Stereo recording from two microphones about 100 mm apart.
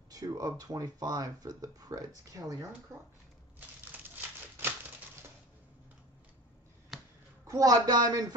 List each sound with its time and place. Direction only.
0.1 s speech: 35° right (ahead or behind)
3.5 s crumpling: 20° right (ahead or behind)
6.9 s finger snapping: 5° right (ahead or behind)
7.4 s speech: 35° right (ahead or behind)